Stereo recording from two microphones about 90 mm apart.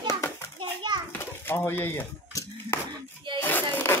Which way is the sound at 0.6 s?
55° right (ahead or behind).